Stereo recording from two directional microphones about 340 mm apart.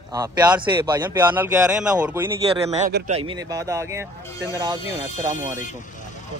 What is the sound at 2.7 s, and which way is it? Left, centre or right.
Speech, right.